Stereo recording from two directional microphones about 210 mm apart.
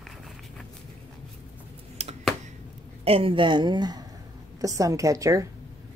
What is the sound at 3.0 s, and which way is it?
A woman's voice, 25° right (ahead or behind).